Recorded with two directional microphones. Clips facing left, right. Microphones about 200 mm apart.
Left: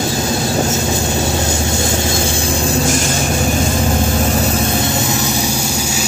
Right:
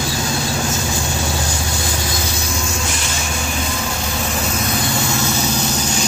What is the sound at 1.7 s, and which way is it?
Vehicle, 25° left (ahead or behind).